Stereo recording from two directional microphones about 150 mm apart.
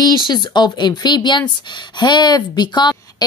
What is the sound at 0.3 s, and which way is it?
Speech, 30° left (ahead or behind).